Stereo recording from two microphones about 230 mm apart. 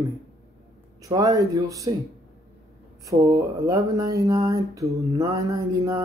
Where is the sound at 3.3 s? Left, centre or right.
Centre.